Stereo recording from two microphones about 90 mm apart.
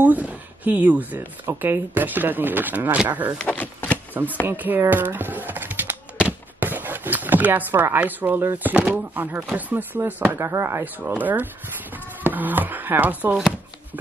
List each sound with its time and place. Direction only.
0.0 s speech: 20° right (ahead or behind)
3.3 s speech: 15° left (ahead or behind)
4.1 s speech: 20° right (ahead or behind)
6.2 s a sound: 20° right (ahead or behind)
8.6 s speech: 15° right (ahead or behind)